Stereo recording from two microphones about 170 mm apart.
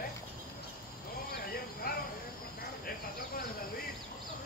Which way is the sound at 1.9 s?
60° left (ahead or behind).